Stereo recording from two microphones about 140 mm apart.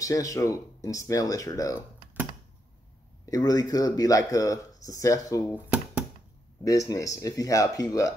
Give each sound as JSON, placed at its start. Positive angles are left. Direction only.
{"t": 0.0, "sound": "speech", "side_deg": 25}
{"t": 3.3, "sound": "speech", "side_deg": 25}
{"t": 5.5, "sound": "a sound", "side_deg": -10}
{"t": 6.6, "sound": "speech", "side_deg": 25}